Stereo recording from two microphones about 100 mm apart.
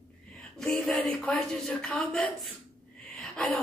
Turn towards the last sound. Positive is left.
turn(degrees=10)  # may be behind; listen again after turning